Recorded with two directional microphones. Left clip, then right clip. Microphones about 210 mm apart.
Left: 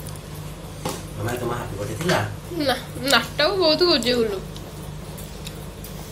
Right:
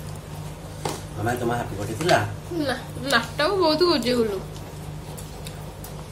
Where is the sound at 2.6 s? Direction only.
5° left (ahead or behind).